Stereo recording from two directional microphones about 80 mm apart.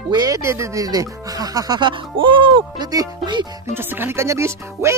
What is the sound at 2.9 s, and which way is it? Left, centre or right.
Speech, right.